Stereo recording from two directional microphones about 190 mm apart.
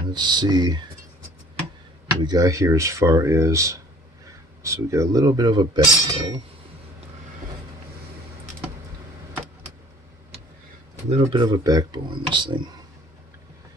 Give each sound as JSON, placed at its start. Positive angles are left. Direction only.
{"t": 0.1, "sound": "speech", "side_deg": -25}
{"t": 2.2, "sound": "speech", "side_deg": -20}
{"t": 11.1, "sound": "speech", "side_deg": -25}